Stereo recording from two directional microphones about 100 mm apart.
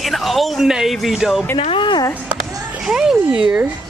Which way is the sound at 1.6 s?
60° left (ahead or behind).